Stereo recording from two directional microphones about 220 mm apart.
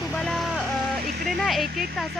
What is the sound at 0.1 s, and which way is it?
Vehicle, centre (ahead or behind).